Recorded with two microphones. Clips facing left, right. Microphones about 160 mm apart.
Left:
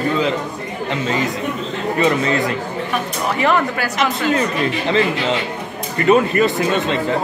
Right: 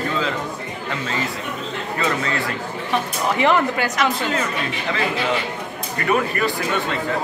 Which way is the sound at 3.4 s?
15° right (ahead or behind).